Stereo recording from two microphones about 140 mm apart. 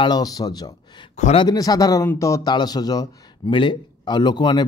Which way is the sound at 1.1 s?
55° left (ahead or behind).